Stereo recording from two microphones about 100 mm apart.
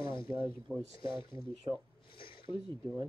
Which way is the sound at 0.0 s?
55° left (ahead or behind).